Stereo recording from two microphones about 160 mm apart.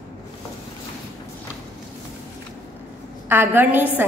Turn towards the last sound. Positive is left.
turn(degrees=-10)  # may be behind; listen again after turning